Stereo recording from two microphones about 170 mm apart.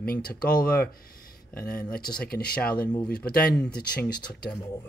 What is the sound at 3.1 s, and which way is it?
Speech, 65° left (ahead or behind).